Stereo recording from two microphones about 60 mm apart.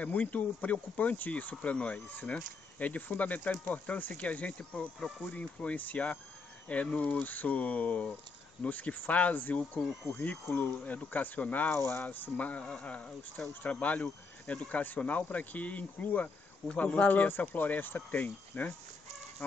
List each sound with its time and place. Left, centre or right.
0.0 s speech: left
10.5 s speech: left
11.7 s speech: left
12.0 s speech: left